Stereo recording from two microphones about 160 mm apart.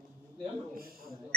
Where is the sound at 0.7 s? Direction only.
65° right (ahead or behind).